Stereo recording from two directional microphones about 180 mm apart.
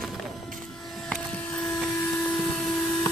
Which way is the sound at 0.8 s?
Centre (ahead or behind).